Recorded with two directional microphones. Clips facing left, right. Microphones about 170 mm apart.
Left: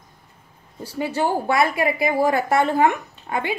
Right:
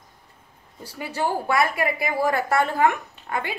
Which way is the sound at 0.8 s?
25° left (ahead or behind).